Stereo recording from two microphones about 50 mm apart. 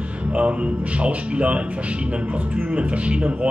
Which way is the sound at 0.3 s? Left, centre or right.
Right.